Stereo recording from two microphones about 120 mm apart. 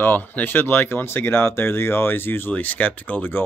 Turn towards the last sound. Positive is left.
turn(degrees=15)  # may be behind; listen again after turning